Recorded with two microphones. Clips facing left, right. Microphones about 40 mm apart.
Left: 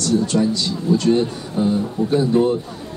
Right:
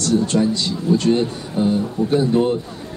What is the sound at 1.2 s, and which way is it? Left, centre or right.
Speech, centre.